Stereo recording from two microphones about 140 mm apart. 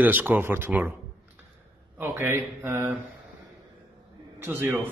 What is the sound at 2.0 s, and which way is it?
Mantra, 15° right (ahead or behind).